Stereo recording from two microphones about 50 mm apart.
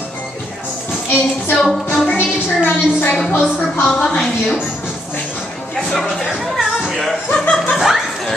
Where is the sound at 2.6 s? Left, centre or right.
Left.